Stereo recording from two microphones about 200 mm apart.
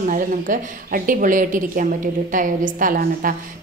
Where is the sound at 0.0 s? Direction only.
40° right (ahead or behind).